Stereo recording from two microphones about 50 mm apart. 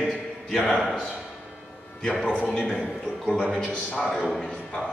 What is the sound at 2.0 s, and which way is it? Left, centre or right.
Speech, centre.